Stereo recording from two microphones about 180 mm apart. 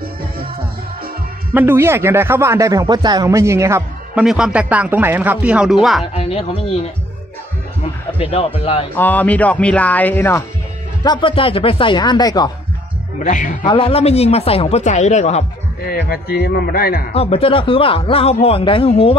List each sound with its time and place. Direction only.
1.5 s speech: 10° right (ahead or behind)
4.2 s speech: 5° right (ahead or behind)
6.1 s a man's voice: 35° left (ahead or behind)
7.8 s music: 30° left (ahead or behind)
8.5 s a man's voice: 30° left (ahead or behind)
8.9 s speech: 10° left (ahead or behind)
11.1 s speech: 30° left (ahead or behind)
13.2 s a man's voice: 45° left (ahead or behind)
13.6 s a man's voice: 30° left (ahead or behind)
15.8 s a man's voice: 60° left (ahead or behind)
17.1 s a man's voice: 35° left (ahead or behind)